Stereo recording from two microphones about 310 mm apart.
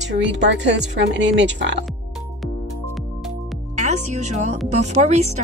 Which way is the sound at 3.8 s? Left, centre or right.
Right.